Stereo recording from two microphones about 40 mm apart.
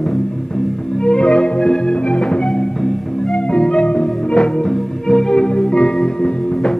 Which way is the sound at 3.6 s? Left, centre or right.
Left.